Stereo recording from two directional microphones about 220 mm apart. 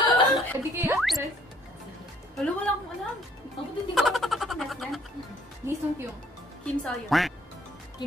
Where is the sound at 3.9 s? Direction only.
Centre (ahead or behind).